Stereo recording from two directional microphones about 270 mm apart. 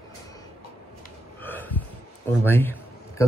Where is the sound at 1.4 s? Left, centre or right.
Centre.